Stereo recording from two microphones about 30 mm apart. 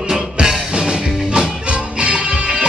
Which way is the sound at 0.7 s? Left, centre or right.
Right.